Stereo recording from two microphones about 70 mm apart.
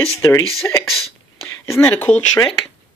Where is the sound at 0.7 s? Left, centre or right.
Left.